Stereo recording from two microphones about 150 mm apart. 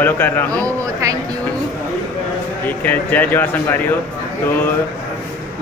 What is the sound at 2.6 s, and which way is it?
Speech, 10° left (ahead or behind).